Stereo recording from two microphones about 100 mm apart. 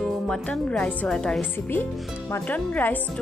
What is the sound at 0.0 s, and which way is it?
A woman's voice, 10° left (ahead or behind).